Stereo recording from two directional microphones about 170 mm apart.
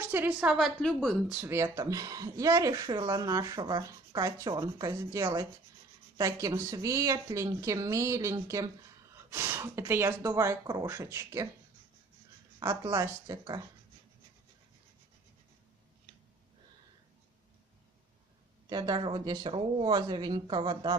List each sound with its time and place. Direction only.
0.0 s a woman's voice: 10° right (ahead or behind)
1.3 s speech: 15° right (ahead or behind)
12.5 s speech: 20° right (ahead or behind)
18.7 s speech: 25° right (ahead or behind)